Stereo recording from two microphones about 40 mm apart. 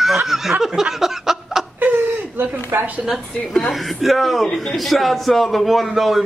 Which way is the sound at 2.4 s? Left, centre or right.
Right.